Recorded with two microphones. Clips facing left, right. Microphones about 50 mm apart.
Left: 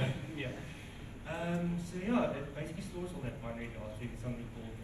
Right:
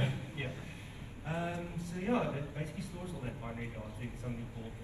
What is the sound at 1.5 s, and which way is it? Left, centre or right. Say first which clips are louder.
Speech: left 4 dB; left.